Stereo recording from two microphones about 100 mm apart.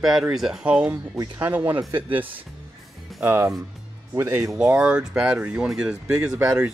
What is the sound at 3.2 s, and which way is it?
Speech, 20° right (ahead or behind).